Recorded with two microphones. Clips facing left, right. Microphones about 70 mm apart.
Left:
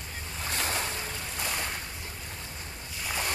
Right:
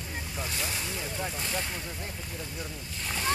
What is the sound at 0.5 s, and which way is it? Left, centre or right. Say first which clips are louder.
Ocean: left 6 dB; left.